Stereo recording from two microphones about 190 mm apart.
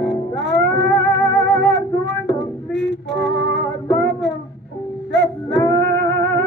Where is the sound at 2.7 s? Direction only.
70° right (ahead or behind).